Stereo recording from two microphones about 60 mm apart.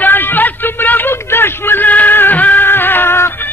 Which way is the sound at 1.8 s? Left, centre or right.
Left.